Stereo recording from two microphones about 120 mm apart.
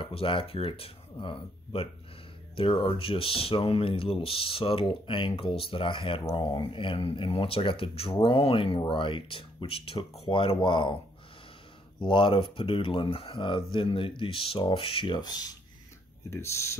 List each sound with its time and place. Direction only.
0.0 s speech: 50° left (ahead or behind)
12.0 s speech: 45° left (ahead or behind)
16.3 s speech: 25° left (ahead or behind)